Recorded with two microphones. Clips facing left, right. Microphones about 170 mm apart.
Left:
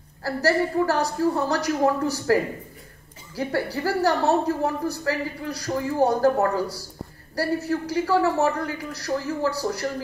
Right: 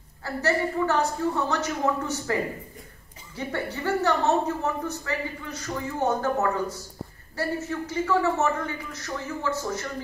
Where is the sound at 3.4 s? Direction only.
35° left (ahead or behind).